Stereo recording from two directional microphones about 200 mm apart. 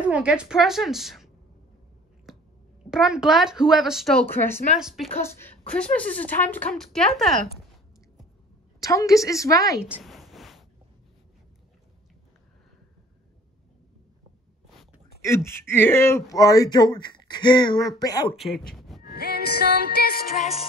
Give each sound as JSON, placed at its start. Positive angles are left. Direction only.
{"t": 0.0, "sound": "speech", "side_deg": -5}
{"t": 2.9, "sound": "speech", "side_deg": -5}
{"t": 5.2, "sound": "a woman's voice", "side_deg": 10}
{"t": 8.8, "sound": "a woman's voice", "side_deg": 15}
{"t": 9.8, "sound": "a sound", "side_deg": -5}
{"t": 15.2, "sound": "speech", "side_deg": 15}
{"t": 18.7, "sound": "vehicle", "side_deg": 0}
{"t": 19.0, "sound": "music", "side_deg": 50}
{"t": 20.3, "sound": "music", "side_deg": 30}